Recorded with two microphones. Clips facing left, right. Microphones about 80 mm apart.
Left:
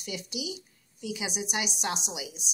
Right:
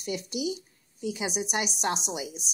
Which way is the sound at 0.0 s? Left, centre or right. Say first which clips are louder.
Right 5 dB; right.